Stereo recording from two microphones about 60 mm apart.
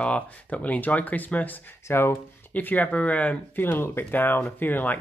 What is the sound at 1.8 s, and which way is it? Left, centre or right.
Speech, left.